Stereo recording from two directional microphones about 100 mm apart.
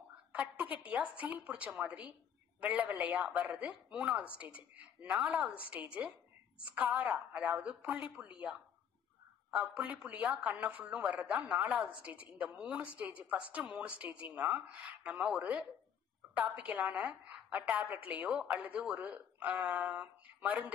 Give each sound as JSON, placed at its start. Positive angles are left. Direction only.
{"t": 0.3, "sound": "a woman's voice", "side_deg": -15}